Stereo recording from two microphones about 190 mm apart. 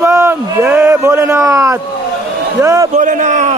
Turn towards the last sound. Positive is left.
turn(degrees=-40)  # may be behind; listen again after turning